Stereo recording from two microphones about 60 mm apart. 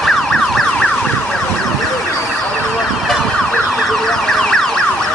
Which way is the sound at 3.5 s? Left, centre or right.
Centre.